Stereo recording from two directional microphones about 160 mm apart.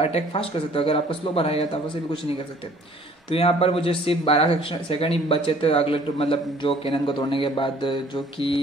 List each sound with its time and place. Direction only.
0.0 s speech: 35° left (ahead or behind)
3.3 s speech: 35° left (ahead or behind)